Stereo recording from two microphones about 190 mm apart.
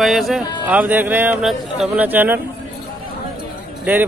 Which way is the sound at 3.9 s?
10° right (ahead or behind).